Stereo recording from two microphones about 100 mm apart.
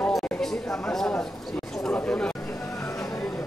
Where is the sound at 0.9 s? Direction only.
5° left (ahead or behind).